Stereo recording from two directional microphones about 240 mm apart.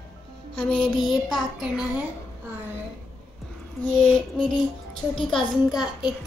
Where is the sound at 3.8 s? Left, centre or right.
Centre.